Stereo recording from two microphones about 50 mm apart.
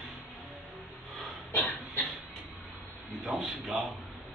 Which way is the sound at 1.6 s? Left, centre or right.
Left.